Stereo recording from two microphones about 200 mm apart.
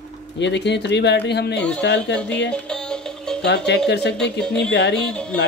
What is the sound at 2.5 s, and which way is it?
Music, 5° left (ahead or behind).